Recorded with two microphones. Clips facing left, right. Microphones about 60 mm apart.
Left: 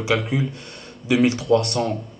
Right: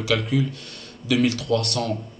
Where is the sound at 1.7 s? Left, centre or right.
Centre.